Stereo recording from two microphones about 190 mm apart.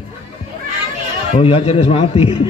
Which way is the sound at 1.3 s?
30° left (ahead or behind).